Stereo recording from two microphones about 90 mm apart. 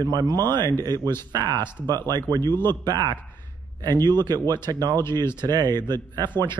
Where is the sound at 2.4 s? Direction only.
25° left (ahead or behind).